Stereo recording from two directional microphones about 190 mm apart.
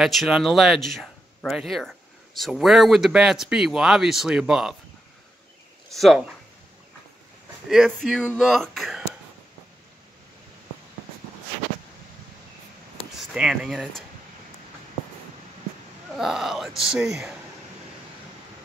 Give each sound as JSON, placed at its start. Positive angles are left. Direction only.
{"t": 0.0, "sound": "speech", "side_deg": 0}
{"t": 5.9, "sound": "speech", "side_deg": 0}
{"t": 7.7, "sound": "speech", "side_deg": 0}
{"t": 13.2, "sound": "speech", "side_deg": -5}
{"t": 16.2, "sound": "speech", "side_deg": 0}